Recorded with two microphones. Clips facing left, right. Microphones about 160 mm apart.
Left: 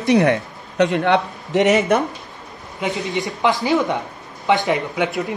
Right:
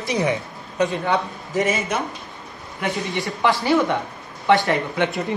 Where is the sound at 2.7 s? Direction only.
20° left (ahead or behind).